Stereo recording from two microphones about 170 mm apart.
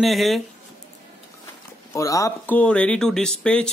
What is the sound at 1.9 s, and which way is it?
Speech, 20° left (ahead or behind).